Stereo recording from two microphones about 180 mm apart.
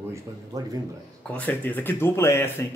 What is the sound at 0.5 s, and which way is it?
Speech, 20° right (ahead or behind).